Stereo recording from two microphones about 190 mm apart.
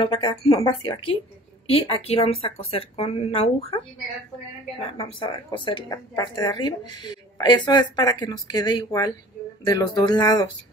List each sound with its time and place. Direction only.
0.0 s speech: 25° left (ahead or behind)